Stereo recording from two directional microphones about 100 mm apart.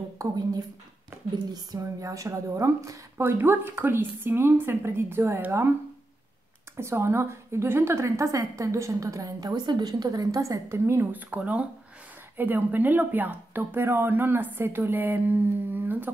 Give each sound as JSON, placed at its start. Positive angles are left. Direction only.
{"t": 0.2, "sound": "a woman's voice", "side_deg": -40}
{"t": 6.8, "sound": "a woman's voice", "side_deg": -25}